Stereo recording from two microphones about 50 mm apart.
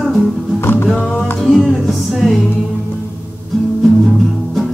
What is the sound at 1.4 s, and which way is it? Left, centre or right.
Music, centre.